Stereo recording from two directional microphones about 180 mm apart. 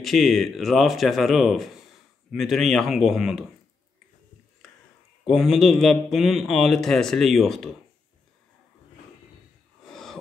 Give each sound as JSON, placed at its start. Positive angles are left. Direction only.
{"t": 0.0, "sound": "speech", "side_deg": 0}
{"t": 5.2, "sound": "speech", "side_deg": 0}
{"t": 9.8, "sound": "snort", "side_deg": 0}